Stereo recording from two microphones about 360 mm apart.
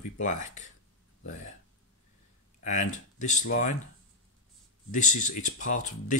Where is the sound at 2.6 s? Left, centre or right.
Left.